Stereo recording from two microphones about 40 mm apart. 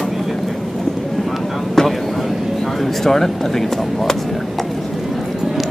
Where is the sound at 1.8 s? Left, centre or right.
Centre.